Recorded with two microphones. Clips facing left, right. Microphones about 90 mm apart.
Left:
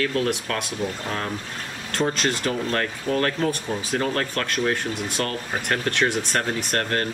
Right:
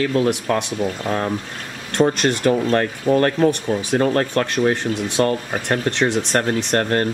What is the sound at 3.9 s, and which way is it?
Speech, 30° right (ahead or behind).